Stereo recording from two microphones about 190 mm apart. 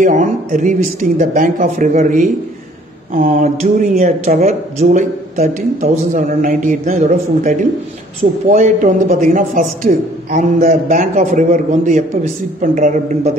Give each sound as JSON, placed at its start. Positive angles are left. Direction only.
{"t": 0.0, "sound": "a man's voice", "side_deg": -45}